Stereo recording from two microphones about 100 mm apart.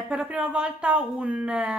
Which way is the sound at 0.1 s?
10° right (ahead or behind).